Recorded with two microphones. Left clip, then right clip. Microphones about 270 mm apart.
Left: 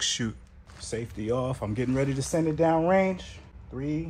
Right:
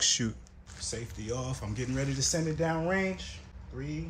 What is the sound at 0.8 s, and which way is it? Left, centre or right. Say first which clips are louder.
Speech: left 5 dB; left.